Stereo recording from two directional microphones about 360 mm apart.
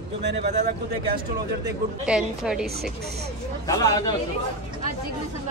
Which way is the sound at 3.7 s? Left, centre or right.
Centre.